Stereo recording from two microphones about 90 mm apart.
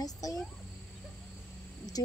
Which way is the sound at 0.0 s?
45° left (ahead or behind).